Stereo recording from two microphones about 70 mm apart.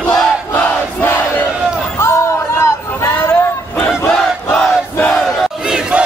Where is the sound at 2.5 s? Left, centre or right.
Left.